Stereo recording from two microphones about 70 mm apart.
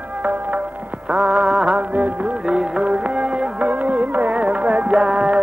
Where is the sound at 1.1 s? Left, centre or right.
Centre.